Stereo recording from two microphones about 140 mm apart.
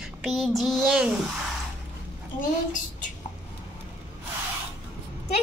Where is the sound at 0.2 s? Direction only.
Centre (ahead or behind).